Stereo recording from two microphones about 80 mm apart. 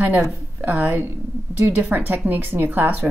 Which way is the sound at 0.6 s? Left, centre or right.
Right.